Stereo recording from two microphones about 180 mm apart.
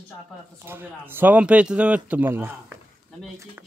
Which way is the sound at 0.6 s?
10° right (ahead or behind).